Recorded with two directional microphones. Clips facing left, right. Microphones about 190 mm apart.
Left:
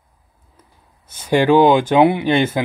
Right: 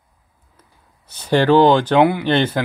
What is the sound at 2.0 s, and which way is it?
Speech, 25° left (ahead or behind).